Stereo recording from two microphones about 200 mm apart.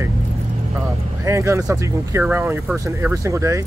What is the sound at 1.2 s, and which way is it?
Speech, 15° right (ahead or behind).